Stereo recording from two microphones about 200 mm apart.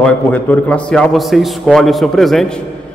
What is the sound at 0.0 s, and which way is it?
A man's voice, 5° left (ahead or behind).